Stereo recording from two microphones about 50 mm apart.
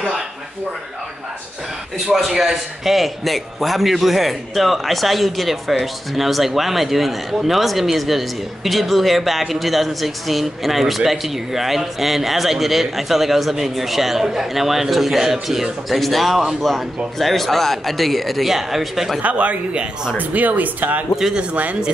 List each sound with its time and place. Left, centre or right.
2.1 s a man's voice: centre
19.2 s a man's voice: right